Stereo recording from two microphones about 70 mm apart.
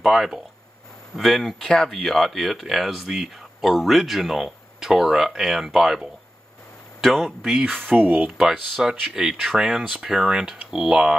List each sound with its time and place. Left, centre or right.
0.0 s speech: centre
7.8 s speech: right
8.4 s speech: centre